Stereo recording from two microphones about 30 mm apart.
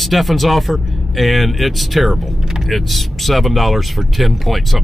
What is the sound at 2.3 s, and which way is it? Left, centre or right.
Speech, centre.